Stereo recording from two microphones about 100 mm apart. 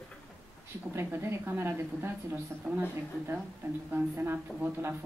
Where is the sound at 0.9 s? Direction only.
25° right (ahead or behind).